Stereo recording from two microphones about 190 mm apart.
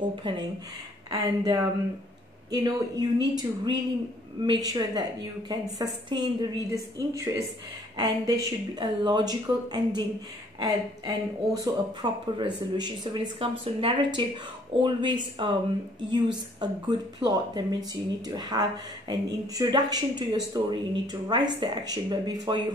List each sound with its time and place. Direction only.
0.1 s speech: 25° right (ahead or behind)
16.5 s speech: 25° right (ahead or behind)